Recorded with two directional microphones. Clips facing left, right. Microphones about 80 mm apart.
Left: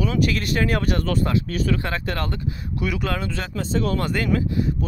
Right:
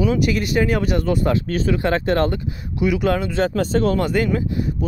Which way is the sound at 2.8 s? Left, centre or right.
Centre.